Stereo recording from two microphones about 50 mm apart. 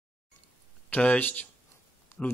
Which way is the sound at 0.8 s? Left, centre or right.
Left.